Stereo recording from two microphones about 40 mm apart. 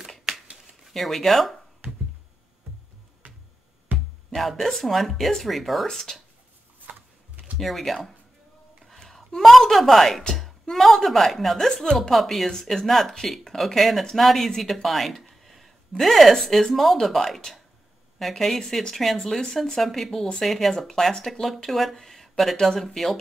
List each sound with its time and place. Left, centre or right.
0.8 s a woman's voice: centre
3.9 s music: right
4.3 s a woman's voice: centre
7.5 s a woman's voice: centre
8.8 s a sound: centre
9.3 s a woman's voice: centre